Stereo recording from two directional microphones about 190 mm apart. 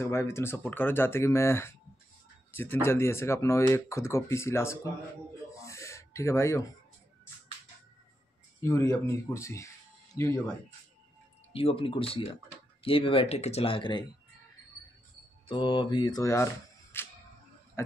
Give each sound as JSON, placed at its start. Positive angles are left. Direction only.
{"t": 0.0, "sound": "speech", "side_deg": 15}
{"t": 5.5, "sound": "gasp", "side_deg": 15}
{"t": 8.5, "sound": "speech", "side_deg": 15}
{"t": 11.5, "sound": "speech", "side_deg": 30}
{"t": 15.4, "sound": "speech", "side_deg": 25}
{"t": 16.9, "sound": "music", "side_deg": 10}
{"t": 17.8, "sound": "speech", "side_deg": 15}